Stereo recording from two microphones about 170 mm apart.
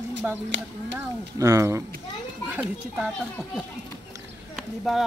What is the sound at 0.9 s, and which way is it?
Speech, 20° right (ahead or behind).